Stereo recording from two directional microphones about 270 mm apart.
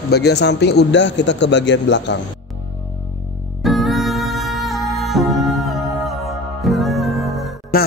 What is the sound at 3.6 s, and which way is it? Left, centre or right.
Music, centre.